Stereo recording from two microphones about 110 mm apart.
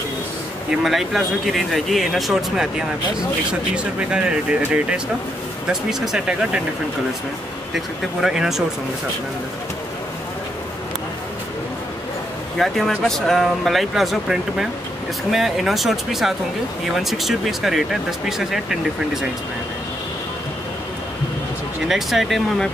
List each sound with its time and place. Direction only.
0.7 s speech: centre (ahead or behind)
7.7 s speech: 5° right (ahead or behind)
12.5 s speech: centre (ahead or behind)
21.8 s speech: centre (ahead or behind)